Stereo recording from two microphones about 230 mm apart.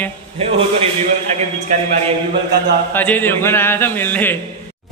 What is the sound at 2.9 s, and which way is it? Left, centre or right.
A man's voice, centre.